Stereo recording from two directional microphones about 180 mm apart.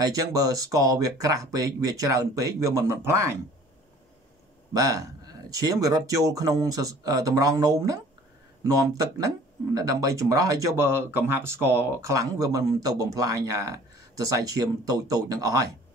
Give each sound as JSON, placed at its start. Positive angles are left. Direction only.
{"t": 0.0, "sound": "speech", "side_deg": -20}
{"t": 4.7, "sound": "speech", "side_deg": -20}
{"t": 9.8, "sound": "speech", "side_deg": -20}